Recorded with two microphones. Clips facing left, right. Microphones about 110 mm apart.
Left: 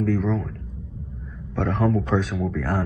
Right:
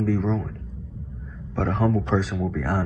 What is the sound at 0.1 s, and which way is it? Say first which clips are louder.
Speech: left 1 dB; 20° right (ahead or behind).